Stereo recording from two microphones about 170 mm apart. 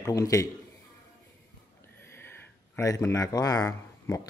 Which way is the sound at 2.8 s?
15° left (ahead or behind).